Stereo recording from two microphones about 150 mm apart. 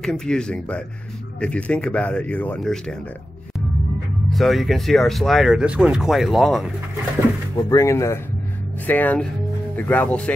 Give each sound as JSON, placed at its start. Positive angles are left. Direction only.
{"t": 0.0, "sound": "speech", "side_deg": 5}
{"t": 4.3, "sound": "speech", "side_deg": 0}
{"t": 7.5, "sound": "speech", "side_deg": 20}